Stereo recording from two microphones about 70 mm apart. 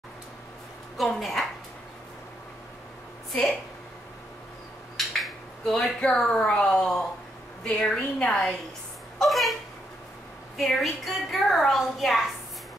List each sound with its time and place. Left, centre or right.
0.9 s a woman's voice: centre
3.3 s speech: centre
4.9 s a woman's voice: centre
9.2 s a sound: centre
10.6 s a woman's voice: centre